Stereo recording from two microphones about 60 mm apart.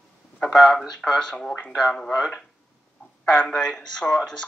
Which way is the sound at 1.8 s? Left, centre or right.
Centre.